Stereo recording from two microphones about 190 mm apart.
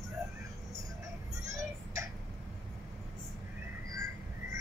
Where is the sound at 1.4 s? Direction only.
15° right (ahead or behind).